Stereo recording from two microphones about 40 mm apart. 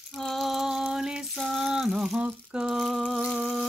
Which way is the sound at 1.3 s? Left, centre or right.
Centre.